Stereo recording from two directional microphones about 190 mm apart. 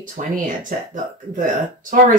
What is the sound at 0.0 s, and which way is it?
Speech, 45° right (ahead or behind).